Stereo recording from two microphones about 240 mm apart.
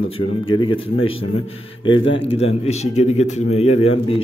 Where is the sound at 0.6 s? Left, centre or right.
Left.